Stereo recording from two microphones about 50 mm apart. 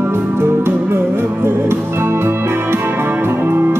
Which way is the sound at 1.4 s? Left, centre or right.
Right.